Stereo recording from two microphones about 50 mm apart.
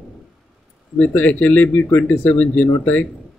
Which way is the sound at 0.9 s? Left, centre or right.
Left.